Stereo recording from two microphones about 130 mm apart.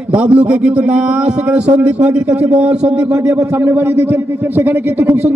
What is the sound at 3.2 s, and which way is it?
A man's voice, 20° right (ahead or behind).